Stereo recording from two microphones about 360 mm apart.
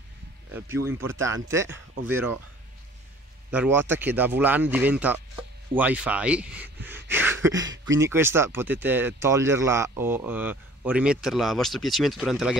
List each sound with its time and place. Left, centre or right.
0.5 s speech: centre
3.5 s speech: centre